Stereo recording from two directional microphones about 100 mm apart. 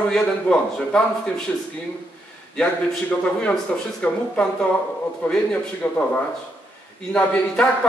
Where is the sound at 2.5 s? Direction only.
10° left (ahead or behind).